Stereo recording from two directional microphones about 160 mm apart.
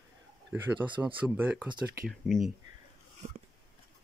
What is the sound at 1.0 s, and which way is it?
Speech, 10° right (ahead or behind).